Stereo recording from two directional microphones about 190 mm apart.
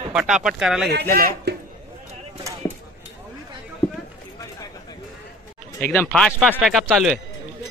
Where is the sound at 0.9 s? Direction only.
55° right (ahead or behind).